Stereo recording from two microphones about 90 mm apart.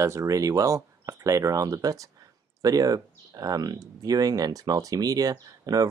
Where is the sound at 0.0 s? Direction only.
35° right (ahead or behind).